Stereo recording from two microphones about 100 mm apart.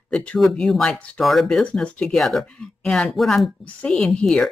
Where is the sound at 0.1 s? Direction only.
10° left (ahead or behind).